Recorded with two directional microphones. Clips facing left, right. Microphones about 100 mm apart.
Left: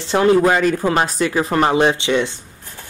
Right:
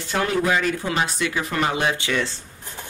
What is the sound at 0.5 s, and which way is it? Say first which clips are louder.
Speech: left 6 dB; 45° left (ahead or behind).